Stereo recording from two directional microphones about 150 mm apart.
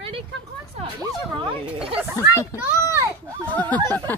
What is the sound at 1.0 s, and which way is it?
Speech, 35° right (ahead or behind).